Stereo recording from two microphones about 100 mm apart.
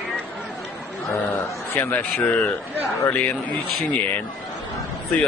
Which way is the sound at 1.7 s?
20° left (ahead or behind).